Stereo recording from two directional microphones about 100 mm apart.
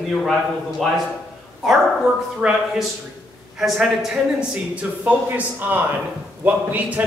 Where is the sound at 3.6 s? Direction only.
5° right (ahead or behind).